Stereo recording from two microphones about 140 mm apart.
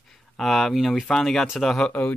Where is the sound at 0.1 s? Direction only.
Centre (ahead or behind).